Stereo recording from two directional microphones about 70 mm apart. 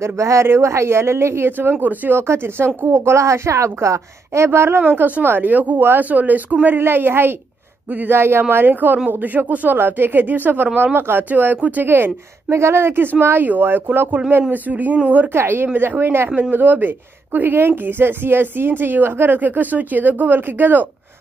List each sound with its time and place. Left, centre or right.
0.0 s speech: right
15.3 s speech: right
16.3 s speech: right